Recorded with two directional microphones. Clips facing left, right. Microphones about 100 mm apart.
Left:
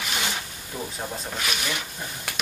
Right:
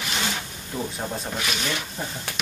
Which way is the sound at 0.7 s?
5° right (ahead or behind).